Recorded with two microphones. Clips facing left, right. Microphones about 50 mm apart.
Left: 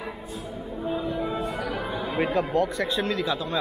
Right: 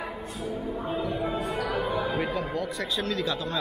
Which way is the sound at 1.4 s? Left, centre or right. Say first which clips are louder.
Right 1 dB; right.